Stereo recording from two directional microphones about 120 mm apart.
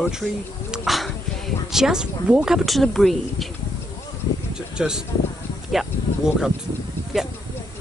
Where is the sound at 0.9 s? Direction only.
Centre (ahead or behind).